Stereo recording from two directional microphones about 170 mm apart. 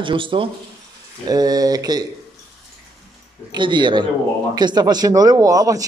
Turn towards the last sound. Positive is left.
turn(degrees=-20)  # may be behind; listen again after turning